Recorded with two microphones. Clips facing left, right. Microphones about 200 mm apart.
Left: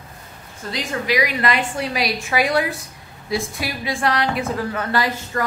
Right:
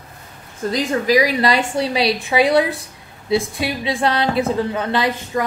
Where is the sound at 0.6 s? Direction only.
40° right (ahead or behind).